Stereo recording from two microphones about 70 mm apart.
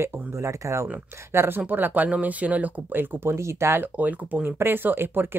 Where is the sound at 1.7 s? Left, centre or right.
Right.